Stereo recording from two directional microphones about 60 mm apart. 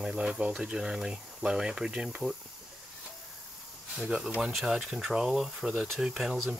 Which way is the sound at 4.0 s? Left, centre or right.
Centre.